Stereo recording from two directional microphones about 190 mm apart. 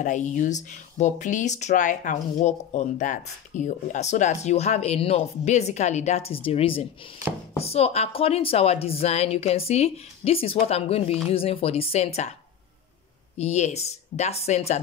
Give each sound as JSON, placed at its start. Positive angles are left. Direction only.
{"t": 0.0, "sound": "speech", "side_deg": 40}
{"t": 13.4, "sound": "speech", "side_deg": 35}